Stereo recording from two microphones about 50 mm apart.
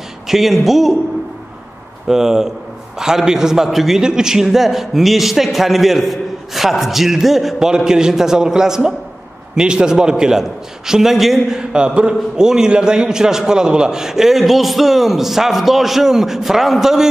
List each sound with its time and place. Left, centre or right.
0.3 s a man's voice: centre
2.0 s a man's voice: centre